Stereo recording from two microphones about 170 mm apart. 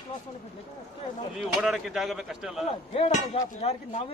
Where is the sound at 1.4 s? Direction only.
Centre (ahead or behind).